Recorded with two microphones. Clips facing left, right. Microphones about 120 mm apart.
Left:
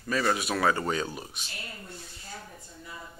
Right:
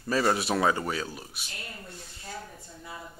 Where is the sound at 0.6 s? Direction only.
10° right (ahead or behind).